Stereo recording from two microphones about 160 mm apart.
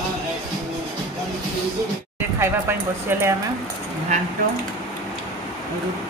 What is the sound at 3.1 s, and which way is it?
Speech, 15° right (ahead or behind).